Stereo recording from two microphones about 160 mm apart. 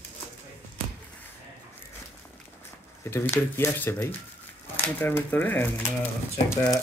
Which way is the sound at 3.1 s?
15° left (ahead or behind).